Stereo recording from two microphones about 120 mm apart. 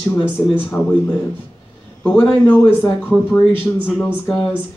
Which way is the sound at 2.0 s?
10° left (ahead or behind).